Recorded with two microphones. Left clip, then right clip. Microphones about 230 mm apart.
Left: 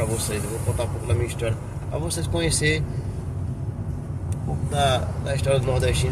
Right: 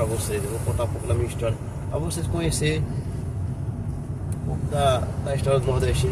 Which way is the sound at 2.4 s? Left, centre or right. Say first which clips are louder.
Left 3 dB; left.